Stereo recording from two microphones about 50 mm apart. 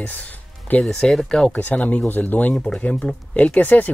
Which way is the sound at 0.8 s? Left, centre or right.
Centre.